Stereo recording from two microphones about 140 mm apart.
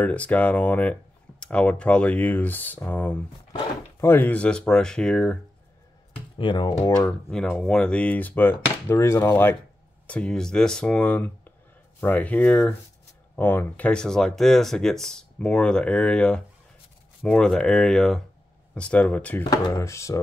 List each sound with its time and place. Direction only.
0.0 s speech: 10° left (ahead or behind)
6.3 s speech: 35° left (ahead or behind)
6.8 s speech: 15° left (ahead or behind)
7.3 s speech: 5° left (ahead or behind)
19.5 s speech: 25° left (ahead or behind)